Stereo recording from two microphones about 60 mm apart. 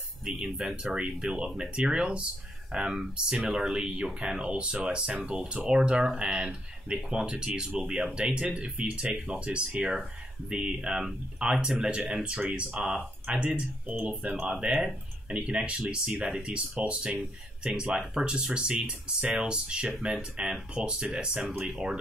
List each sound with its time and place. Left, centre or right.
0.2 s speech: centre
12.8 s speech: centre
13.8 s speech: right
14.4 s speech: centre